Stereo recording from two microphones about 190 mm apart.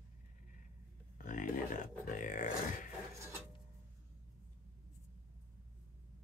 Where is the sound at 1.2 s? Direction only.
45° left (ahead or behind).